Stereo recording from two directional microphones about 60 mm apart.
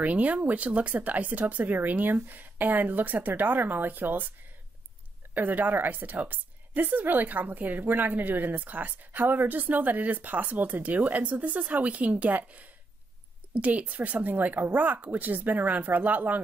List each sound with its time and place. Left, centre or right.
0.0 s a woman's voice: right
5.3 s a woman's voice: right